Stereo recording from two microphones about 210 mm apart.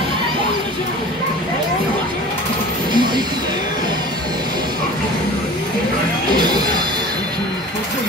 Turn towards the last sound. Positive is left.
turn(degrees=-20)  # may be behind; listen again after turning